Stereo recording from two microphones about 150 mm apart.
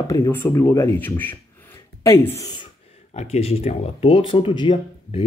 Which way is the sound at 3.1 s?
45° left (ahead or behind).